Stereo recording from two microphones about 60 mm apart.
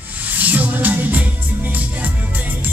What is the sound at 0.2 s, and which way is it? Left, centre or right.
Music, right.